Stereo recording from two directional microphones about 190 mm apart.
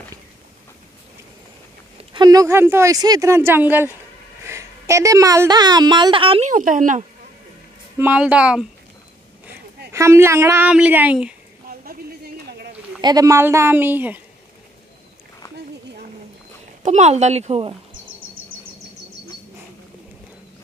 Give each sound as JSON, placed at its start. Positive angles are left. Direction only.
{"t": 2.1, "sound": "a woman's voice", "side_deg": -20}
{"t": 6.5, "sound": "speech", "side_deg": -45}
{"t": 8.0, "sound": "a woman's voice", "side_deg": -5}
{"t": 9.9, "sound": "speech", "side_deg": -15}
{"t": 12.4, "sound": "a sound", "side_deg": -55}
{"t": 13.0, "sound": "speech", "side_deg": -20}
{"t": 16.8, "sound": "speech", "side_deg": -35}